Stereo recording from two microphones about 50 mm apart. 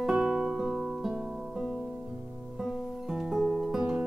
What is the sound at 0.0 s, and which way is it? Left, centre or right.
Music, centre.